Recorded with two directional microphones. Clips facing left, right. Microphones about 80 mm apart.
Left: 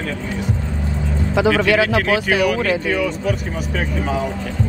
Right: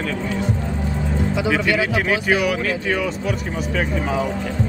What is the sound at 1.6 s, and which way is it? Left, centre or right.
Speech, left.